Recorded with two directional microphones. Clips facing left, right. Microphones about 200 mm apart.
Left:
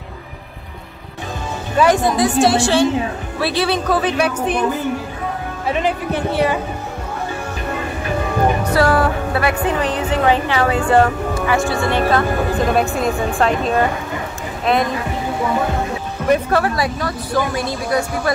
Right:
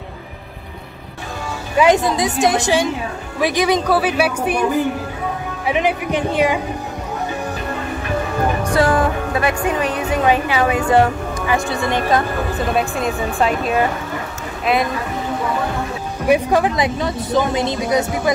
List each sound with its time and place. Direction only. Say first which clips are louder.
1.8 s a woman's voice: even; 20° right (ahead or behind)
5.7 s speech: right 1 dB; 15° right (ahead or behind)
8.7 s speech: right 1 dB; 15° right (ahead or behind)
12.7 s a woman's voice: left 2 dB; centre (ahead or behind)
16.3 s a woman's voice: right 1 dB; 15° right (ahead or behind)